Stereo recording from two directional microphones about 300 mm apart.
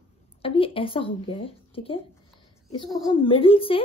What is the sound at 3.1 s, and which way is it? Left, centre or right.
Speech, centre.